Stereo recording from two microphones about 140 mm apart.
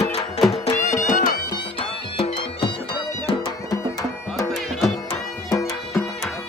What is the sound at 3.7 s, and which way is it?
Music, 25° left (ahead or behind).